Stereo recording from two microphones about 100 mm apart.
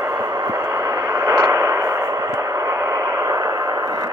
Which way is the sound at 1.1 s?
30° right (ahead or behind).